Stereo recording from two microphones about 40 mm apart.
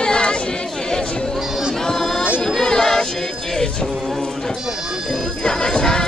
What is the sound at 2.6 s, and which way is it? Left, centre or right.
A capella, centre.